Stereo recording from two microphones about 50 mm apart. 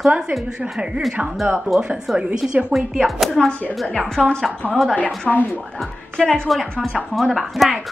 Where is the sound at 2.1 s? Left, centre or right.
Centre.